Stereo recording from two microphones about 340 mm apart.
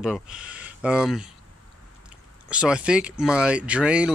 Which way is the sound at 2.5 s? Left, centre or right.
Centre.